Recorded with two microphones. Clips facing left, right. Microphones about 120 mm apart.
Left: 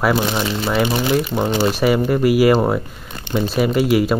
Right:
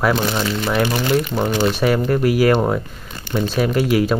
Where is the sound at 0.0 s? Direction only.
10° left (ahead or behind).